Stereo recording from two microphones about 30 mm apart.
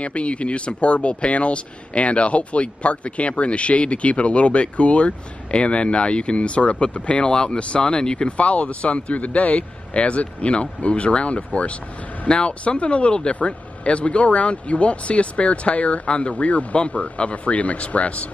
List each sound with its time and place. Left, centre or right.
0.0 s speech: left
8.3 s speech: left